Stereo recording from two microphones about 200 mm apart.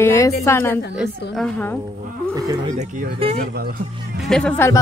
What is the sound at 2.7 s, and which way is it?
Speech, 40° right (ahead or behind).